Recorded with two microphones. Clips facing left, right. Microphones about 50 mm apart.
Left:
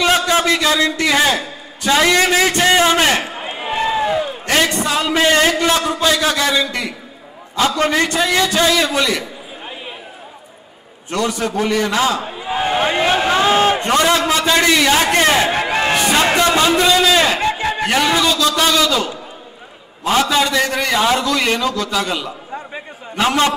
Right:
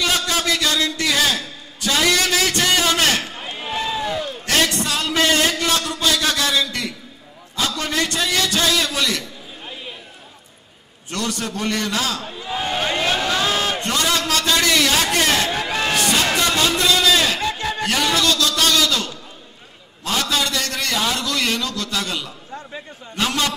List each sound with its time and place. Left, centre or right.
0.0 s a man's voice: left
8.1 s a man's voice: centre
11.1 s a man's voice: centre
11.9 s a man's voice: left
22.5 s a sound: left